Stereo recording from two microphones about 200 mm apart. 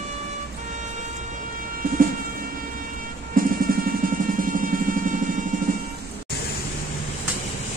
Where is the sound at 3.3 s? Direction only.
45° right (ahead or behind).